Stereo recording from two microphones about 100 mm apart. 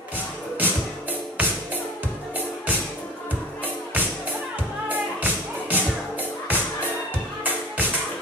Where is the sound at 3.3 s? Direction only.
15° right (ahead or behind).